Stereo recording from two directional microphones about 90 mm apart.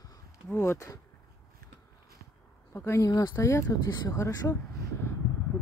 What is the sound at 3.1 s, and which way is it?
Speech, 45° left (ahead or behind).